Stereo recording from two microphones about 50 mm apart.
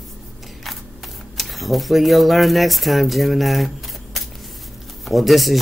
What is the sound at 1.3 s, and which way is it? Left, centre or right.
Speech, centre.